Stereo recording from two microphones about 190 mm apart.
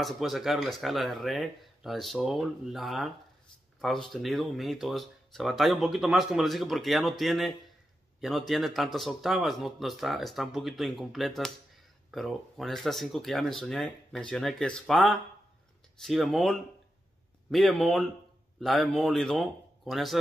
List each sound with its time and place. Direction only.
0.0 s speech: centre (ahead or behind)